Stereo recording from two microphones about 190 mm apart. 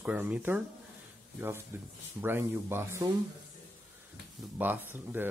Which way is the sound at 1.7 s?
10° right (ahead or behind).